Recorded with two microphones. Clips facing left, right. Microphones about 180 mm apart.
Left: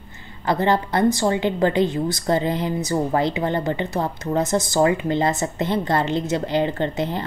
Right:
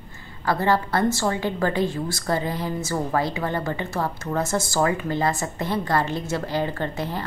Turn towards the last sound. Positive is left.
turn(degrees=20)  # may be behind; listen again after turning